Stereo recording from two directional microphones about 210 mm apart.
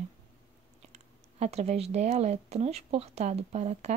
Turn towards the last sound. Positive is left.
turn(degrees=-30)  # may be behind; listen again after turning